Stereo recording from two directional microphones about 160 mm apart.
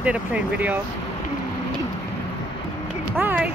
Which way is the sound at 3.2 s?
10° right (ahead or behind).